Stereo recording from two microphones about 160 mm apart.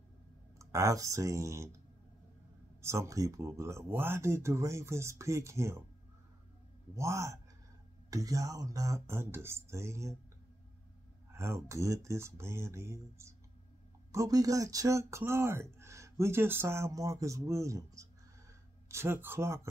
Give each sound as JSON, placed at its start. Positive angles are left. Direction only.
{"t": 0.6, "sound": "speech", "side_deg": -20}
{"t": 2.8, "sound": "speech", "side_deg": -15}
{"t": 7.0, "sound": "speech", "side_deg": -20}
{"t": 11.3, "sound": "speech", "side_deg": -15}